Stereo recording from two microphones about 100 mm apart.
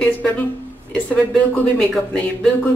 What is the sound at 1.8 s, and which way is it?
Speech, 5° left (ahead or behind).